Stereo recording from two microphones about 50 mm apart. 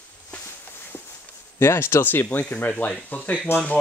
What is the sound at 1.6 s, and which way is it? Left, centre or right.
Speech, left.